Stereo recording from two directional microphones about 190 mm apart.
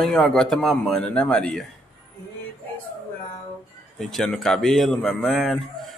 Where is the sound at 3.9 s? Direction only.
Centre (ahead or behind).